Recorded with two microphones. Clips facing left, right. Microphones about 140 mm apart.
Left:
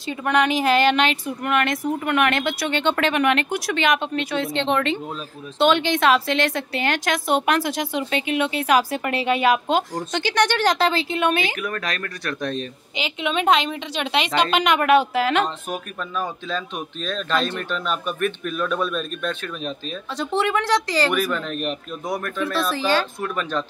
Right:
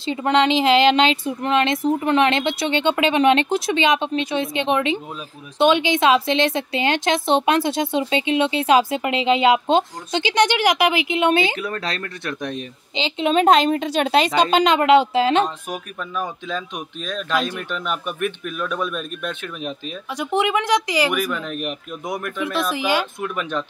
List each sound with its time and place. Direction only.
0.0 s speech: 25° right (ahead or behind)
14.5 s speech: 30° right (ahead or behind)
15.4 s speech: 10° right (ahead or behind)